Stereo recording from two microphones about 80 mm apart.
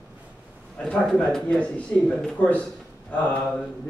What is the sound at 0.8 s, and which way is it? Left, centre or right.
Speech, centre.